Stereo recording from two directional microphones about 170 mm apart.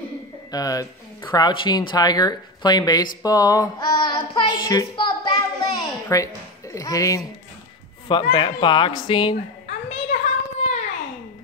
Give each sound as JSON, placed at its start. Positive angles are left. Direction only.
{"t": 0.5, "sound": "speech", "side_deg": 20}
{"t": 3.2, "sound": "child singing", "side_deg": 20}
{"t": 8.1, "sound": "speech", "side_deg": 30}
{"t": 9.7, "sound": "a sound", "side_deg": 45}